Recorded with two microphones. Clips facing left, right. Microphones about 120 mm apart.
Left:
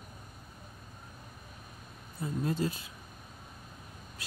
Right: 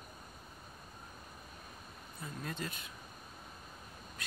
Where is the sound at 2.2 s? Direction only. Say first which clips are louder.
Left 10 dB; 30° left (ahead or behind).